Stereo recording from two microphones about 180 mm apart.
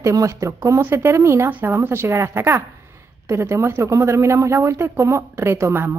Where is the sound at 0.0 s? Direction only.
20° right (ahead or behind).